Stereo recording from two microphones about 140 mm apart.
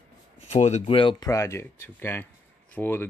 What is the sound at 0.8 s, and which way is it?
Speech, 35° left (ahead or behind).